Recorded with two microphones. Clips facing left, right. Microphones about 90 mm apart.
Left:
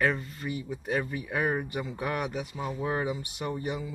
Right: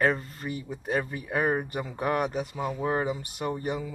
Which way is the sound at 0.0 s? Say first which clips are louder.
Right 2 dB; 40° right (ahead or behind).